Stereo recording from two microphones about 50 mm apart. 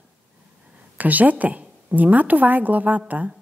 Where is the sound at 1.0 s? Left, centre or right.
Right.